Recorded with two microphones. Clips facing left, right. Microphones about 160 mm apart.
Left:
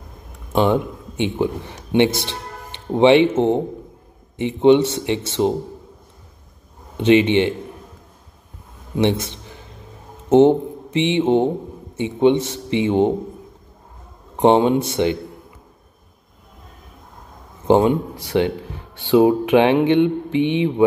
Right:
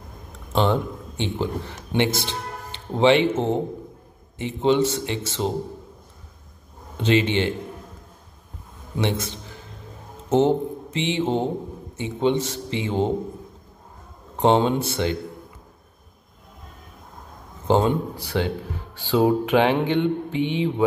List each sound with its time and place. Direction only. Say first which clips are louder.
0.5 s speech: left 4 dB; 15° left (ahead or behind)
2.9 s mantra: left 5 dB; 20° left (ahead or behind)
7.1 s mantra: left 6 dB; 20° left (ahead or behind)
10.3 s speech: left 6 dB; 20° left (ahead or behind)
12.0 s mantra: left 6 dB; 20° left (ahead or behind)
14.3 s speech: left 4 dB; 15° left (ahead or behind)
15.0 s mantra: left 6 dB; 20° left (ahead or behind)
17.6 s a man's voice: left 5 dB; 15° left (ahead or behind)
18.3 s mantra: left 6 dB; 20° left (ahead or behind)